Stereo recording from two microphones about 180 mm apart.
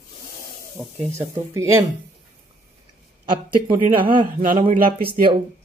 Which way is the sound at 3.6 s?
25° right (ahead or behind).